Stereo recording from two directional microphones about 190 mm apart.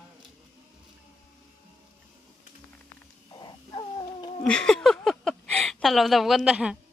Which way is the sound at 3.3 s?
25° left (ahead or behind).